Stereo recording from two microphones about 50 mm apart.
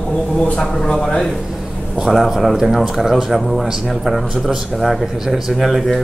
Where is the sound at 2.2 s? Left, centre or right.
Centre.